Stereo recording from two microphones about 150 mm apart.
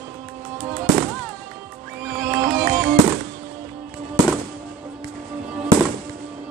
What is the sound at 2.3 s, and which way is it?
Music, 70° right (ahead or behind).